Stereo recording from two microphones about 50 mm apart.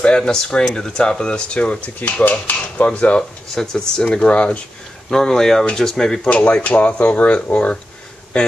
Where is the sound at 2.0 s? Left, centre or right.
Left.